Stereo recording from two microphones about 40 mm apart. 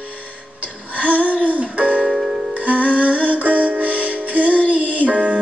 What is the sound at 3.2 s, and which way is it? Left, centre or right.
Music, right.